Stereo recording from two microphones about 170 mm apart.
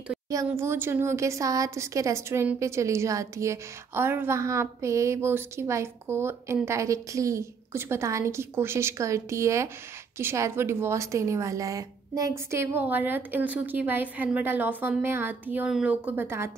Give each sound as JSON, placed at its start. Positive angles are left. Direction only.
{"t": 0.5, "sound": "a woman's voice", "side_deg": -15}